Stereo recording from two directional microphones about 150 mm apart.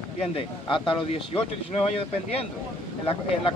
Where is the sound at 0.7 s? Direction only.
35° left (ahead or behind).